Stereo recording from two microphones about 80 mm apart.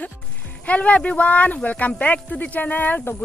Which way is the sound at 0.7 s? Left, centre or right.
Centre.